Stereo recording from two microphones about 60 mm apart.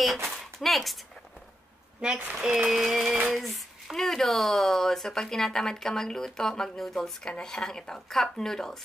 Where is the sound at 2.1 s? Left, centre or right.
Right.